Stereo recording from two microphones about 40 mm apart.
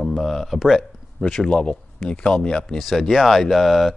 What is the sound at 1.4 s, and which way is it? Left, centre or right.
Speech, left.